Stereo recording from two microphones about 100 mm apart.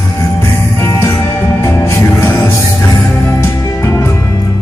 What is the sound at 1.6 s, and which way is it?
Music, 30° left (ahead or behind).